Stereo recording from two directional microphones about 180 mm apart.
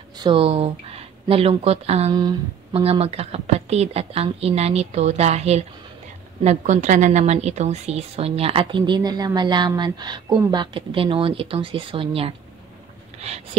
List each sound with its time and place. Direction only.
0.2 s speech: 30° right (ahead or behind)
2.1 s speech: 20° right (ahead or behind)
2.8 s a woman's voice: 35° right (ahead or behind)